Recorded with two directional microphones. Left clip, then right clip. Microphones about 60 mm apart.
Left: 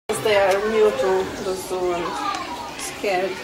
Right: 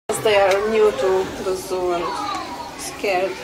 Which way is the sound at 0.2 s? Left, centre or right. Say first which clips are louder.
Right 2 dB; right.